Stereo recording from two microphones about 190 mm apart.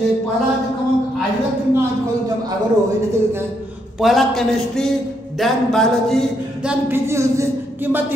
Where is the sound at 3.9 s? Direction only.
Centre (ahead or behind).